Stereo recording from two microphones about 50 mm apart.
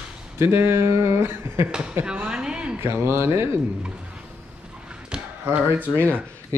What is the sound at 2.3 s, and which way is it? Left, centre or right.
Speech, centre.